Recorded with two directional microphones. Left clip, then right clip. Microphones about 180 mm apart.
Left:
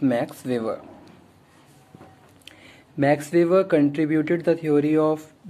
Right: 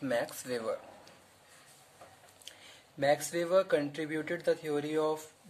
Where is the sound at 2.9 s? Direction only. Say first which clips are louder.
Left 10 dB; 20° right (ahead or behind).